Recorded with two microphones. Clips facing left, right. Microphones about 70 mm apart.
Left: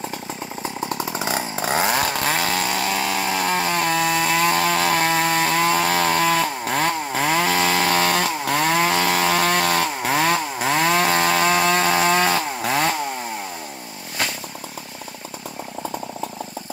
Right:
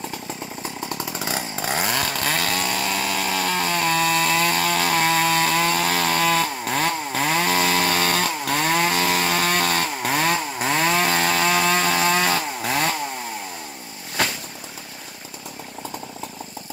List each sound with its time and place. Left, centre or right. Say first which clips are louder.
0.6 s chainsaw: left 5 dB; left
6.6 s chainsaw: left 2 dB; left
7.6 s chainsaw: left 2 dB; centre